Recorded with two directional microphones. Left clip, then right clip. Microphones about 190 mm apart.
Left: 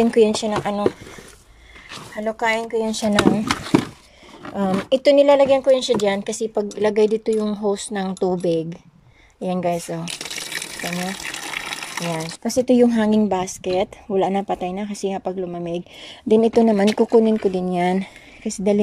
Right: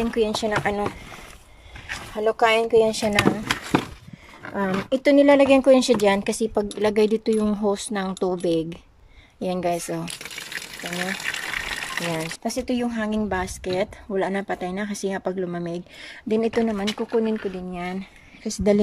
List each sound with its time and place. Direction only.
0.0 s speech: 20° left (ahead or behind)
0.3 s speech: 5° left (ahead or behind)
2.1 s speech: 5° right (ahead or behind)
4.6 s speech: 10° left (ahead or behind)
10.0 s water: 10° left (ahead or behind)
12.1 s speech: 10° left (ahead or behind); by 13.2 s 25° left (ahead or behind)
13.2 s speech: 15° left (ahead or behind)
16.7 s speech: 30° left (ahead or behind)
18.4 s speech: 10° left (ahead or behind)